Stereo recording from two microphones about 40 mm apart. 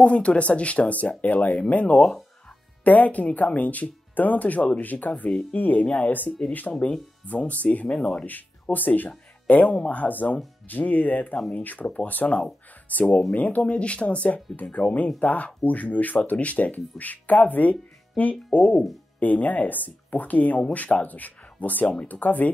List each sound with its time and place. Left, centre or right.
0.0 s speech: left
7.9 s speech: left
8.7 s speech: left
11.8 s speech: left
13.6 s speech: left